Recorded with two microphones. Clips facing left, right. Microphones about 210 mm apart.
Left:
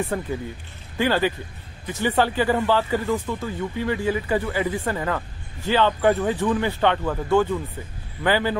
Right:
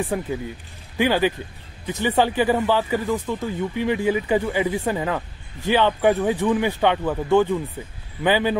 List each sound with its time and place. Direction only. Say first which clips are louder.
0.1 s speech: right 1 dB; 10° right (ahead or behind)